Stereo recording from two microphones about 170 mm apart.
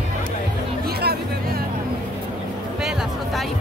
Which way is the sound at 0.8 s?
65° right (ahead or behind).